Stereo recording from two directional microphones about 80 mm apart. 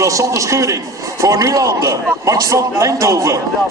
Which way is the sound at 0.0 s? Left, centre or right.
Right.